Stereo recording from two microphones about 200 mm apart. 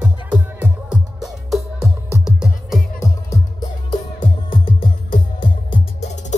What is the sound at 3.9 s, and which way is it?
Music, 25° left (ahead or behind).